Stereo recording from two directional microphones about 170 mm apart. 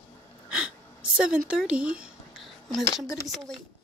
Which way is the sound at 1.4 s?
5° right (ahead or behind).